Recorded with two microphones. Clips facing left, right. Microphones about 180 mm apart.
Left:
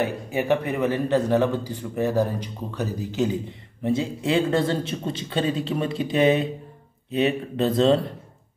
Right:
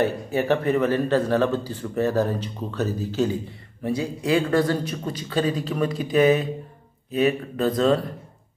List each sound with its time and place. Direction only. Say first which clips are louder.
0.0 s speech: right 2 dB; 15° left (ahead or behind)